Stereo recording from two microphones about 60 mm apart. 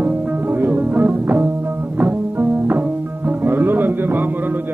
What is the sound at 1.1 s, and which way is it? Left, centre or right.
Music, centre.